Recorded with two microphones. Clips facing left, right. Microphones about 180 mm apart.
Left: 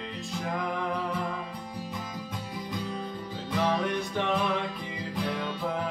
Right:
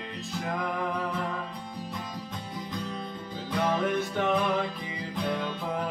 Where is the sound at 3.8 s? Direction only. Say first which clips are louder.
Right 2 dB; centre (ahead or behind).